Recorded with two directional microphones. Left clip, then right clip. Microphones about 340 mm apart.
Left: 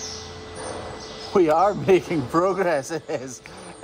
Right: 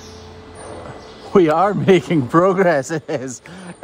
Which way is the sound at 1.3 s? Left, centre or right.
Right.